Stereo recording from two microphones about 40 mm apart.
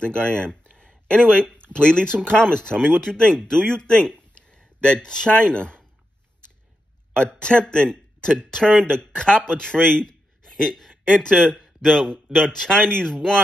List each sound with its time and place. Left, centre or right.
0.0 s a sound: left
1.2 s speech: centre
5.0 s speech: centre
7.2 s a man's voice: left